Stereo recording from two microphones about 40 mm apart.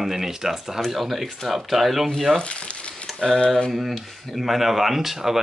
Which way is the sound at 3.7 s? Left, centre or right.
Centre.